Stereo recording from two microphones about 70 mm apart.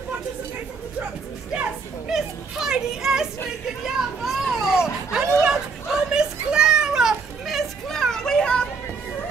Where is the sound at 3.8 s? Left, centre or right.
Centre.